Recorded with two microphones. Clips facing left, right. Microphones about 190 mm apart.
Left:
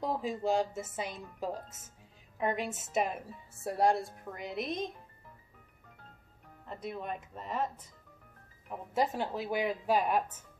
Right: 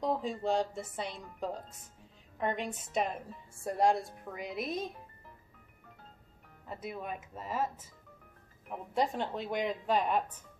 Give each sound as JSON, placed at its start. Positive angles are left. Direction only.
{"t": 0.0, "sound": "a woman's voice", "side_deg": 5}
{"t": 6.7, "sound": "a woman's voice", "side_deg": -5}